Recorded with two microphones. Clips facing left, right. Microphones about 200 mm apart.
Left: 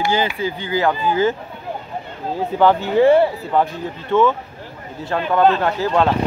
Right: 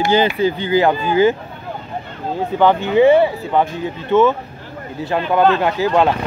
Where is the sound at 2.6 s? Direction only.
5° left (ahead or behind).